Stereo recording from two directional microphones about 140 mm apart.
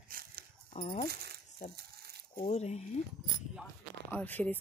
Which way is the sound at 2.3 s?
55° left (ahead or behind).